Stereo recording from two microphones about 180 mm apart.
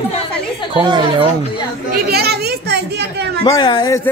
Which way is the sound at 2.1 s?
60° right (ahead or behind).